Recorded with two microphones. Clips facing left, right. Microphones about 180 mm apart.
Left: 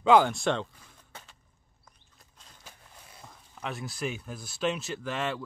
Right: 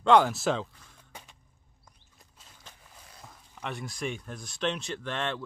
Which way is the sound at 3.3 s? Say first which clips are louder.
Left 1 dB; centre (ahead or behind).